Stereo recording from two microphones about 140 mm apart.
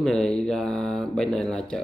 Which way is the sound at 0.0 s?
5° left (ahead or behind).